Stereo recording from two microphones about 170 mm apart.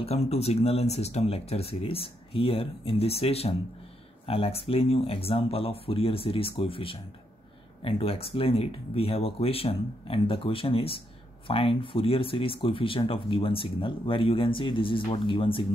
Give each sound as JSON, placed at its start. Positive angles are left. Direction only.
{"t": 0.0, "sound": "speech", "side_deg": 40}